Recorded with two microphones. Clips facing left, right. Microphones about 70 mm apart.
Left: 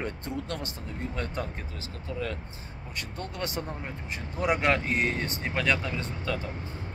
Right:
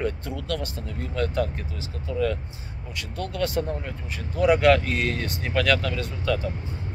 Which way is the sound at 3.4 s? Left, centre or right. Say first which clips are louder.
Right 8 dB; left.